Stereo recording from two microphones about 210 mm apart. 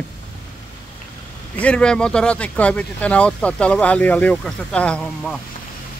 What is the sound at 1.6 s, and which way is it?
Speech, 5° left (ahead or behind).